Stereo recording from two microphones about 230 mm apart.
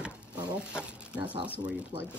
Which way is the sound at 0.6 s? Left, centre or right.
Centre.